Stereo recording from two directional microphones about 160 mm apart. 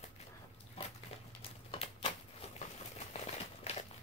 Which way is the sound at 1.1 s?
40° left (ahead or behind).